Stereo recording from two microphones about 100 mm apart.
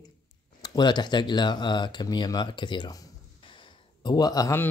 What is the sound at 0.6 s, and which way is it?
Speech, 45° left (ahead or behind).